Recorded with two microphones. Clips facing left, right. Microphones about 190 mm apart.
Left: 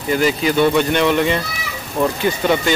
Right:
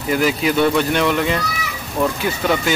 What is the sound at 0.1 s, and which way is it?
Speech, 5° right (ahead or behind).